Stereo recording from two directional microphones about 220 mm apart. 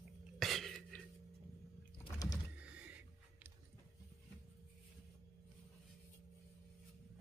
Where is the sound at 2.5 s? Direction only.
5° right (ahead or behind).